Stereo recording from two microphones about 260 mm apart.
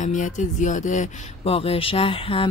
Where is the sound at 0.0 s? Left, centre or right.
Left.